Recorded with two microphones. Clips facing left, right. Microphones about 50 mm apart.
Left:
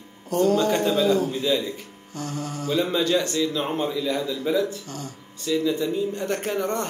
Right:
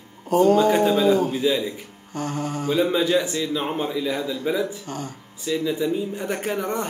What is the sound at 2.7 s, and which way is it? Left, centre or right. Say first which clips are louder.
A man's voice: right 2 dB; centre.